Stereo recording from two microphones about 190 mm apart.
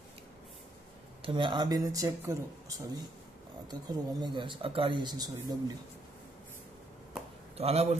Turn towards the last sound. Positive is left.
turn(degrees=-30)  # may be behind; listen again after turning